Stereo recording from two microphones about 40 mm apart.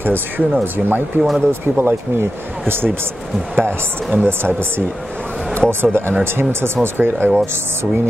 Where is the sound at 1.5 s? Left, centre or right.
Right.